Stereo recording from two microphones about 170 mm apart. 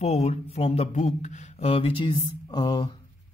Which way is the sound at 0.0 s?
40° left (ahead or behind).